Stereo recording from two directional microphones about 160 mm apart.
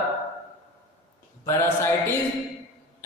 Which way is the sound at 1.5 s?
15° left (ahead or behind).